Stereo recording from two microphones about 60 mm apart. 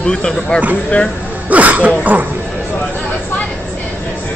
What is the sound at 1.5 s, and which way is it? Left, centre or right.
Speech, right.